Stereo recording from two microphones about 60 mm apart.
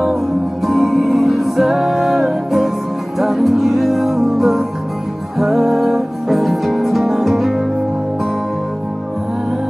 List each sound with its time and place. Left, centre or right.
0.7 s music: centre